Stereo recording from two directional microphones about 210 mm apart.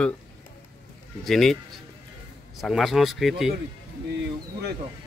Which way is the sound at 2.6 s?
Centre (ahead or behind).